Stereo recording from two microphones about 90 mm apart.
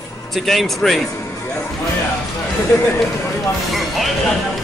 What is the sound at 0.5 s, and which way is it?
Speech, 5° left (ahead or behind).